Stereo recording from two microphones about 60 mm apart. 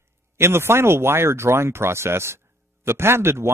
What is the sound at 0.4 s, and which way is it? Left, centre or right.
Speech, right.